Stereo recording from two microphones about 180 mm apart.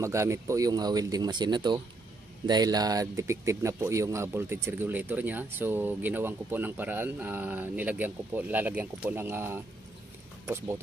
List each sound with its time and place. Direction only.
0.0 s speech: 15° right (ahead or behind)